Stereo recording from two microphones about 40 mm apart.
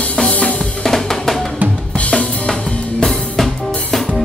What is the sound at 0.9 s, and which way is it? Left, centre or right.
Drum, centre.